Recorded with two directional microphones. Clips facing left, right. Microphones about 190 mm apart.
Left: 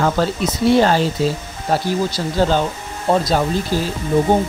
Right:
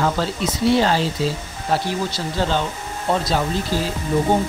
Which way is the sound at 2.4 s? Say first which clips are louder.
Left 5 dB; 40° left (ahead or behind).